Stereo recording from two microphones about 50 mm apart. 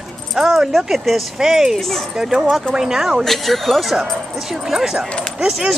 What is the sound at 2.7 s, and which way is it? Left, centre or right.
Speech, centre.